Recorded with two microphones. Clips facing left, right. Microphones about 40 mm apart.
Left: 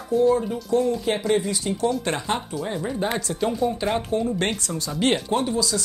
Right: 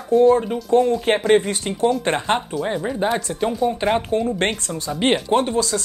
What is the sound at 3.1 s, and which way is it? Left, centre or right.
Speech, centre.